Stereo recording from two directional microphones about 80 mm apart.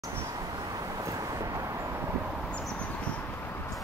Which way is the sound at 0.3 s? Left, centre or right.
Right.